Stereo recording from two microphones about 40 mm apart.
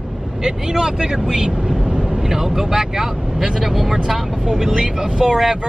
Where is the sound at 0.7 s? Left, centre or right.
Centre.